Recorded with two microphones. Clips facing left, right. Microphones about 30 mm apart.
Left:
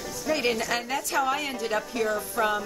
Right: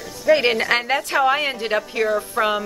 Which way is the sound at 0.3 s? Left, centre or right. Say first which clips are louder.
Right 9 dB; right.